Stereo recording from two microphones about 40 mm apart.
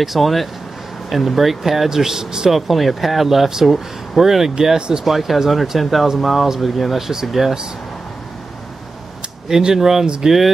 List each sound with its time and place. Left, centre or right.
0.0 s speech: centre
2.5 s speech: centre
4.6 s speech: centre
5.0 s speech: centre
9.8 s speech: centre
10.0 s speech: right